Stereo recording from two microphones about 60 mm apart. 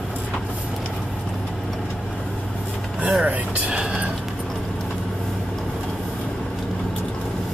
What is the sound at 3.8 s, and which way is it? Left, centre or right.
Music, centre.